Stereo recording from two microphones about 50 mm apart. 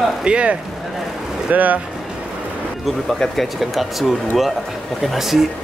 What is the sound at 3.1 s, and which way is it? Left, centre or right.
Speech, centre.